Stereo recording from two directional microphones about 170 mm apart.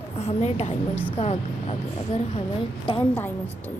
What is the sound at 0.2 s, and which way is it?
Speech, 40° left (ahead or behind).